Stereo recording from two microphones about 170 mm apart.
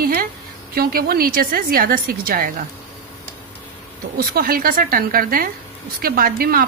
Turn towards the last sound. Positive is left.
turn(degrees=-60)  # may be behind; listen again after turning